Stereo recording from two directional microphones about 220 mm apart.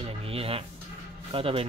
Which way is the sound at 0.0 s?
25° right (ahead or behind).